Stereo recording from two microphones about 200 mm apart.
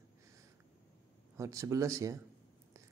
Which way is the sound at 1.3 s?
15° right (ahead or behind).